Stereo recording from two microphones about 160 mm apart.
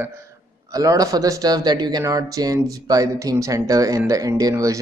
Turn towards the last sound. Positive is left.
turn(degrees=-20)  # may be behind; listen again after turning